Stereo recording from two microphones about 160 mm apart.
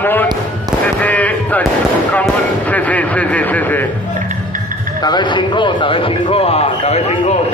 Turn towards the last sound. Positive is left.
turn(degrees=45)  # may be behind; listen again after turning